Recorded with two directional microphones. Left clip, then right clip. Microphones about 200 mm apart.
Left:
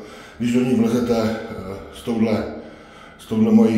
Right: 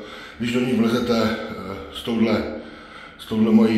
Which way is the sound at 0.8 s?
10° left (ahead or behind).